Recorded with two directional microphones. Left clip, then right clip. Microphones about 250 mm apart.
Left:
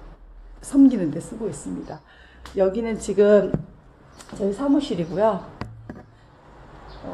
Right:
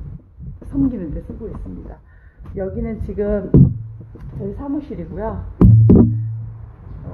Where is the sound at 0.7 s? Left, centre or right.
Centre.